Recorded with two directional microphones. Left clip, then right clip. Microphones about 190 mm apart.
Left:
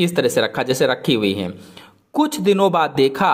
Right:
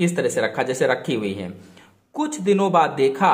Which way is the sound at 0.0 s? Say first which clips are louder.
Left 4 dB; 30° left (ahead or behind).